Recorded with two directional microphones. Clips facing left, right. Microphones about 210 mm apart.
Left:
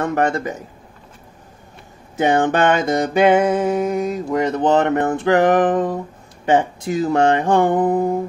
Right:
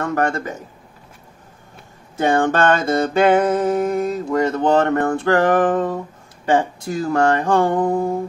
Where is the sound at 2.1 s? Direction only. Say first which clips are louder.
Left 1 dB; 20° left (ahead or behind).